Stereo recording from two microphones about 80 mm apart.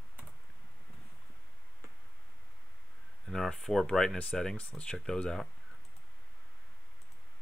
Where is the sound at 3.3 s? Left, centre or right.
Centre.